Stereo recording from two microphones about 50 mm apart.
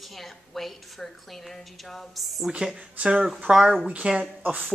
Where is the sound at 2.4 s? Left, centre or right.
Centre.